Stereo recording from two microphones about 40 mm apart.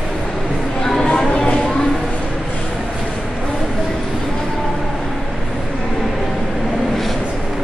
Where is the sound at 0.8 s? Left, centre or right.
Centre.